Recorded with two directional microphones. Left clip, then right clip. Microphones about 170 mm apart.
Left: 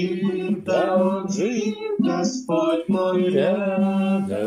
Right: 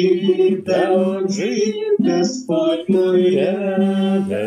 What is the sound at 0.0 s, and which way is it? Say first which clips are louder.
Music: right 10 dB; 5° right (ahead or behind).